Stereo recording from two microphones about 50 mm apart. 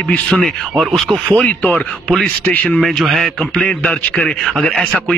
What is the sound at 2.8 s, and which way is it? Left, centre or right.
Speech, centre.